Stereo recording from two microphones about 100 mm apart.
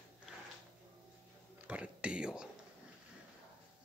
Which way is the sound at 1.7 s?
10° right (ahead or behind).